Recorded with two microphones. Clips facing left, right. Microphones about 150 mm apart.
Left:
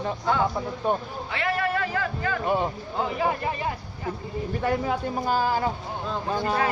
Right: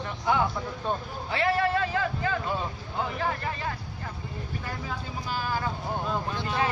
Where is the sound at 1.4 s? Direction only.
25° right (ahead or behind).